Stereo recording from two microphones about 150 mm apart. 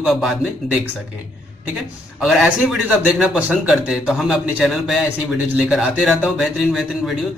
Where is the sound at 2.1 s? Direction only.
Centre (ahead or behind).